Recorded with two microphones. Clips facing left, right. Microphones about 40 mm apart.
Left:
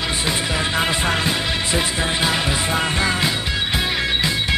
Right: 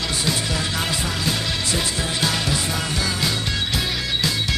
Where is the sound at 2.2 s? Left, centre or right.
Left.